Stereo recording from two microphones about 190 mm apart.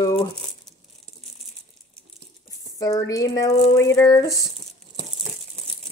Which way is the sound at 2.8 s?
20° left (ahead or behind).